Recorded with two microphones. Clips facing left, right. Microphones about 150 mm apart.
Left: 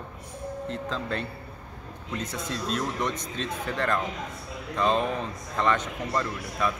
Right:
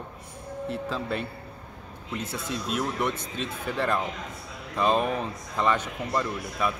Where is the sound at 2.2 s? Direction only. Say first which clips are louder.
Left 1 dB; 30° right (ahead or behind).